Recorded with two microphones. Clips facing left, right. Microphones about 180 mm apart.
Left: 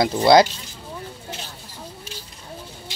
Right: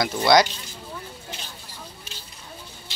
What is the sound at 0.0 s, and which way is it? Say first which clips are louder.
Speech: left 4 dB; 30° left (ahead or behind).